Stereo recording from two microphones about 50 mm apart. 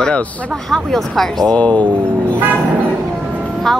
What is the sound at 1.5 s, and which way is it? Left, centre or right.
Speech, left.